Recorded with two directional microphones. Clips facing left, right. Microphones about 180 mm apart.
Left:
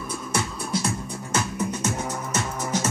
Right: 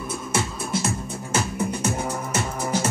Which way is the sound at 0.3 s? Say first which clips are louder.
Right 1 dB; 25° right (ahead or behind).